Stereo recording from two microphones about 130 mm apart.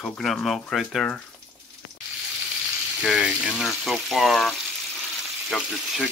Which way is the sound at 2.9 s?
5° right (ahead or behind).